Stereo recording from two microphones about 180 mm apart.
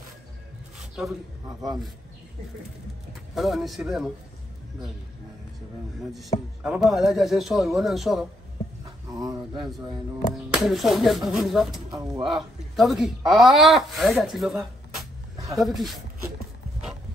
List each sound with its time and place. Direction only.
0.7 s a sound: centre (ahead or behind)
3.3 s speech: centre (ahead or behind)
6.6 s speech: centre (ahead or behind)
9.1 s speech: 20° right (ahead or behind)
10.3 s speech: centre (ahead or behind)
11.9 s speech: 25° right (ahead or behind)
12.7 s speech: centre (ahead or behind)
15.3 s a sound: 20° right (ahead or behind)
15.6 s speech: centre (ahead or behind)